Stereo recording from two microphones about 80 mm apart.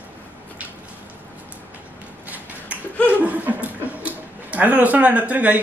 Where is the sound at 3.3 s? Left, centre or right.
Centre.